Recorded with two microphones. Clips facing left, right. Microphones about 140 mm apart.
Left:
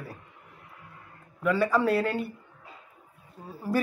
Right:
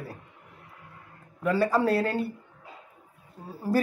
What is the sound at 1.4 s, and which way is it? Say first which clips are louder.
Speech: even; 35° right (ahead or behind).